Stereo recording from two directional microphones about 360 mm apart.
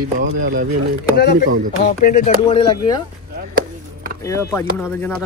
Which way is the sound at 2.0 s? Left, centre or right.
Left.